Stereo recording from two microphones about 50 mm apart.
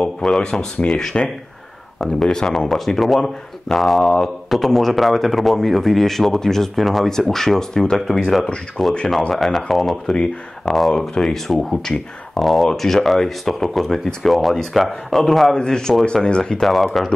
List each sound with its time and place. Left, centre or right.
0.0 s speech: centre
3.8 s a man's voice: centre
12.4 s a man's voice: centre
15.5 s speech: centre
16.6 s a man's voice: centre